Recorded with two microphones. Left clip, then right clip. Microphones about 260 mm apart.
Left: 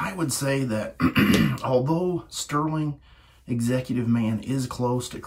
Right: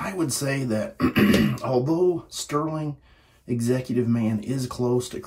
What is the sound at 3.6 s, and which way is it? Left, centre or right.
Speech, left.